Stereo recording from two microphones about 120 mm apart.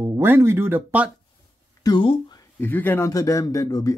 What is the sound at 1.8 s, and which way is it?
Speech, 40° left (ahead or behind).